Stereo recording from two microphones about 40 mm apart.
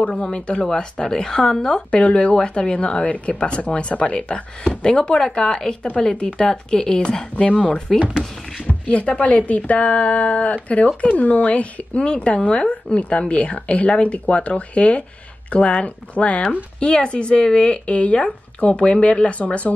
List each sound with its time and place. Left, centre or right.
0.1 s speech: left
1.9 s speech: left
2.3 s speech: left